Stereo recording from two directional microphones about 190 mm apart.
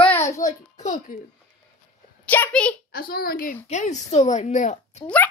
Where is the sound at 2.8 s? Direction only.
55° left (ahead or behind).